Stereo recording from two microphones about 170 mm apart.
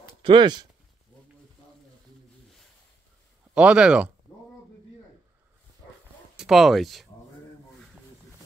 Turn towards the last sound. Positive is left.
turn(degrees=0)  # may be behind; listen again after turning